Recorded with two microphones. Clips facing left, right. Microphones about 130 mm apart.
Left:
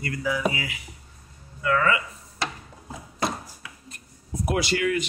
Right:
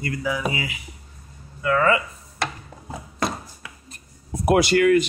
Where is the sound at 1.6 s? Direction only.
30° right (ahead or behind).